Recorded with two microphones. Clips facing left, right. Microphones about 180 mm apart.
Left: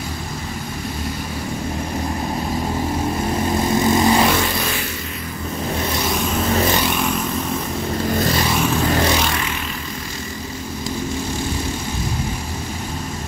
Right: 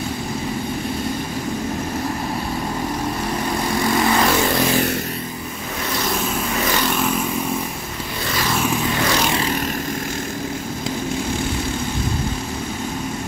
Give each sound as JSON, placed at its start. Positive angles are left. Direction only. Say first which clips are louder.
{"t": 3.6, "sound": "vehicle", "louder": "left 3 dB", "side_deg": 20}
{"t": 6.8, "sound": "vehicle", "louder": "even", "side_deg": 0}